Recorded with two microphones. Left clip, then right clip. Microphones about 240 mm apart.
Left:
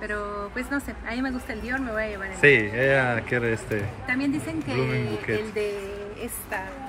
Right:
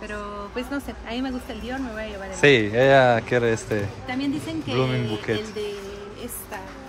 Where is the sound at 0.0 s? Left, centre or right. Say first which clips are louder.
Left 2 dB; centre.